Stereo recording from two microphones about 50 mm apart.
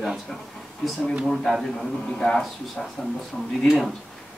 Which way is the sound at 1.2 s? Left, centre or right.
Centre.